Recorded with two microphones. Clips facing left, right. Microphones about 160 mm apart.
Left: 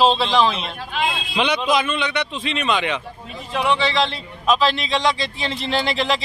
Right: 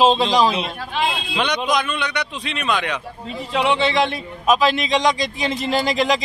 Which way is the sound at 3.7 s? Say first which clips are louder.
Right 2 dB; 55° right (ahead or behind).